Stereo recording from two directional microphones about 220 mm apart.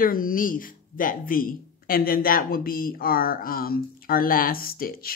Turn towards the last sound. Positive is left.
turn(degrees=40)  # may be behind; listen again after turning